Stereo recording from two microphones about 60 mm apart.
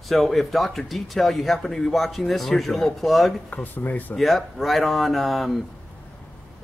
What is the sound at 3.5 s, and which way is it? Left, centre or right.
Speech, left.